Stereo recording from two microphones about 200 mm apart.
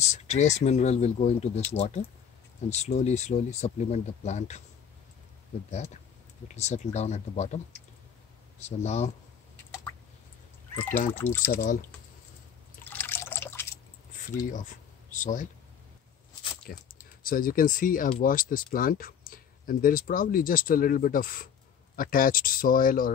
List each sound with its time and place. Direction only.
0.0 s speech: 35° left (ahead or behind)
6.5 s speech: 35° left (ahead or behind)
11.1 s speech: 10° left (ahead or behind)
12.9 s liquid: 10° left (ahead or behind)
14.5 s speech: 40° left (ahead or behind)
16.7 s speech: 50° left (ahead or behind)